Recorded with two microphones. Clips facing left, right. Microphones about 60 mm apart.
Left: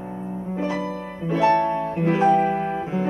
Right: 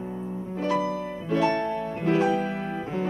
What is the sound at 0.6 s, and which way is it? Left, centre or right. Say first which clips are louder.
Music: right 1 dB; centre.